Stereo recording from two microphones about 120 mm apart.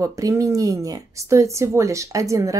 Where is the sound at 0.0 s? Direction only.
30° right (ahead or behind).